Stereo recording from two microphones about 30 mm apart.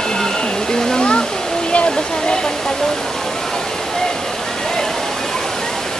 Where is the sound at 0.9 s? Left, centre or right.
Left.